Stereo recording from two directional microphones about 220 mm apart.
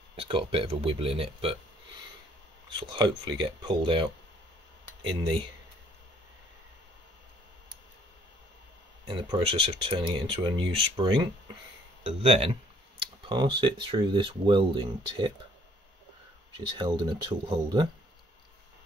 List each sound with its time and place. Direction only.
0.1 s speech: 25° right (ahead or behind)
2.7 s speech: 20° right (ahead or behind)
9.0 s speech: 25° right (ahead or behind)
16.5 s speech: 20° right (ahead or behind)